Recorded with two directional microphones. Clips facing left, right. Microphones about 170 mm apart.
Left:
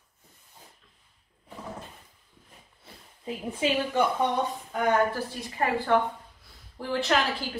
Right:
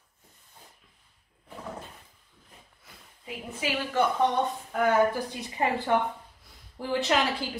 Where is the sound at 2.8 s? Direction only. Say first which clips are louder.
Left 8 dB; 30° left (ahead or behind).